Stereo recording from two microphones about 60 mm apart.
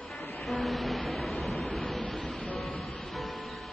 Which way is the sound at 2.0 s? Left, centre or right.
Centre.